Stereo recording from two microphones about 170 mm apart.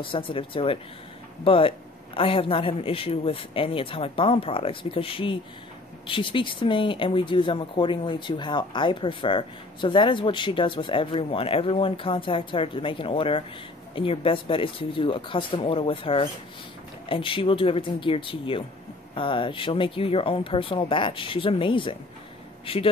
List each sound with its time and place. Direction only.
0.0 s speech: 30° left (ahead or behind)